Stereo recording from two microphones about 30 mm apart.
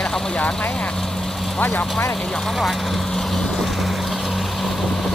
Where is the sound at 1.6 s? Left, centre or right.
Left.